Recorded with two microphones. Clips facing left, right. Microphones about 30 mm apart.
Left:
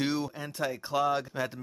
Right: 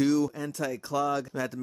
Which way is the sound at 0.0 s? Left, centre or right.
Left.